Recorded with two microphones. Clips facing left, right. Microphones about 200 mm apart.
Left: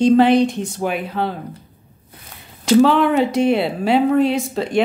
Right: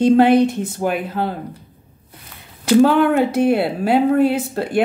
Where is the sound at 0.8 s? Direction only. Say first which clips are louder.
Right 2 dB; 50° right (ahead or behind).